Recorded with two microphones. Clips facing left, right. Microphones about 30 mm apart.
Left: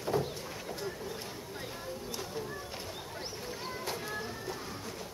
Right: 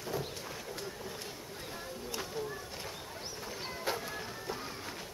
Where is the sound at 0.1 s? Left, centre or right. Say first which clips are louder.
Left 6 dB; left.